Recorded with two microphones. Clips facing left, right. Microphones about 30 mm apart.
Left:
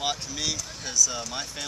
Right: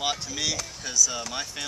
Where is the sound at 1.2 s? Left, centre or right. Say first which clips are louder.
Right 1 dB; centre.